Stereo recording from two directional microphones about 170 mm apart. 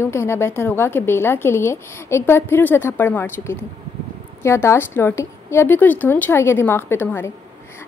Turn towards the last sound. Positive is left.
turn(degrees=15)  # may be behind; listen again after turning